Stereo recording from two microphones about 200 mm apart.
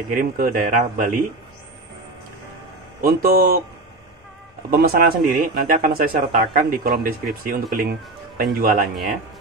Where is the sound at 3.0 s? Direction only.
50° right (ahead or behind).